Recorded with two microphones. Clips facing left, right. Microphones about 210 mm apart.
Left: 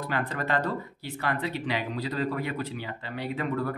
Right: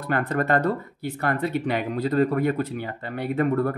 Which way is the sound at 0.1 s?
50° right (ahead or behind).